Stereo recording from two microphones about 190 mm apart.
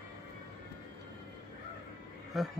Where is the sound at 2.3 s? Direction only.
Centre (ahead or behind).